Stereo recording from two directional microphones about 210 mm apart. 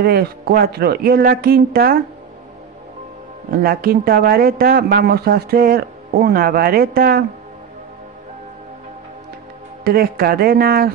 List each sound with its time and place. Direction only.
0.0 s speech: 45° right (ahead or behind)
3.4 s speech: 45° right (ahead or behind)
9.8 s speech: 45° right (ahead or behind)